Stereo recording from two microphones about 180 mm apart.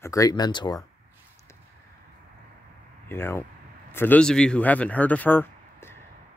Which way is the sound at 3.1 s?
15° left (ahead or behind).